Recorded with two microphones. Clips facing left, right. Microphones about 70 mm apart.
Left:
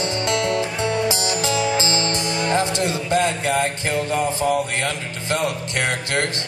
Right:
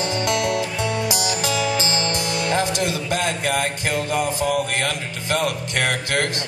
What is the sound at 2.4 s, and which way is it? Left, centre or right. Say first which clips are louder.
Music: left 1 dB; left.